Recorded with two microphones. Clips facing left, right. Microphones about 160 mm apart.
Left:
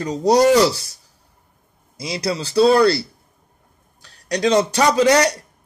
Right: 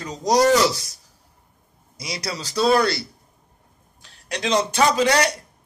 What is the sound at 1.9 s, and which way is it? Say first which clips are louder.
Speech: left 7 dB; 30° left (ahead or behind).